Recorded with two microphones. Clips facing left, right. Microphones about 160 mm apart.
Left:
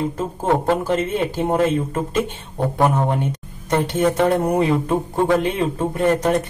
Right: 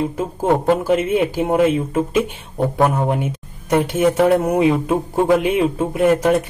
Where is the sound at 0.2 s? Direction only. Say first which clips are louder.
Right 3 dB; 10° right (ahead or behind).